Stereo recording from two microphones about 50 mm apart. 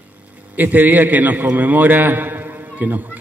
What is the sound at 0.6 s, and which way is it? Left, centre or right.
A man's voice, right.